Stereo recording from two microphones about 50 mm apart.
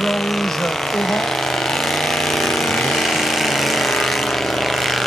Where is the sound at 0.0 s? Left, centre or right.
Centre.